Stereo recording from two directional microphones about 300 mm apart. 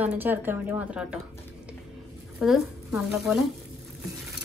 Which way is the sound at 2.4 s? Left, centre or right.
Centre.